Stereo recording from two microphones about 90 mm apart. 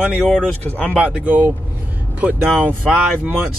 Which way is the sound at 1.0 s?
15° right (ahead or behind).